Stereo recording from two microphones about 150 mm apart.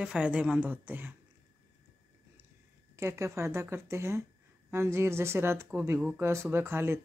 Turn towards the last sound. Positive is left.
turn(degrees=-15)  # may be behind; listen again after turning